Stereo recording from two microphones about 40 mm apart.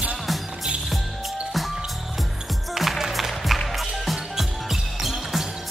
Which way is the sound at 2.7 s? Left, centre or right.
Centre.